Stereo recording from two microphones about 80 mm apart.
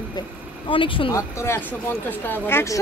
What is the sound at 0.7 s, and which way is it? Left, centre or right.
Speech, left.